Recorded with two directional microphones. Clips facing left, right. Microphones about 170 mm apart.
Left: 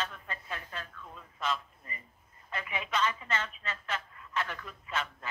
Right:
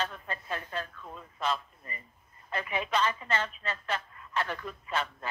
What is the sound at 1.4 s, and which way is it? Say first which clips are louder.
A man's voice: right 3 dB; 35° right (ahead or behind).